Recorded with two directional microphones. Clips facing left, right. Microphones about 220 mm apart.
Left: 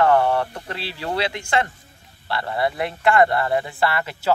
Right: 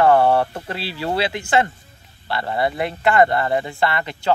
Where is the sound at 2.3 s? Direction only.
25° right (ahead or behind).